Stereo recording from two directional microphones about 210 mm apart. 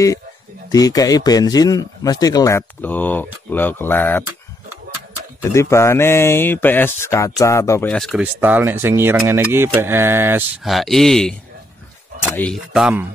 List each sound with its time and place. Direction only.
0.7 s speech: 15° left (ahead or behind)
5.4 s speech: 15° left (ahead or behind)
8.4 s speech: 10° right (ahead or behind)
10.7 s speech: centre (ahead or behind)
12.4 s speech: centre (ahead or behind)